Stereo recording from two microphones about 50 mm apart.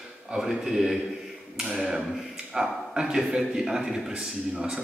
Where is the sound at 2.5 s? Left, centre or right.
Centre.